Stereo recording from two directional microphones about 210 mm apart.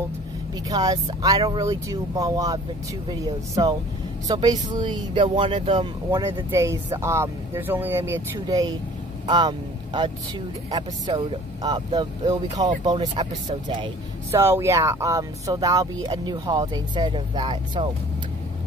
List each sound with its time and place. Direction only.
0.7 s speech: 20° right (ahead or behind)